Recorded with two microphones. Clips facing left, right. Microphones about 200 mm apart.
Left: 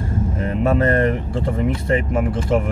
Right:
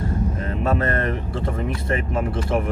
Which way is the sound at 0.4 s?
20° left (ahead or behind).